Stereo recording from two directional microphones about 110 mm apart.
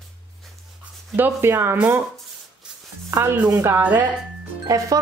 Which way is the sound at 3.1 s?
25° right (ahead or behind).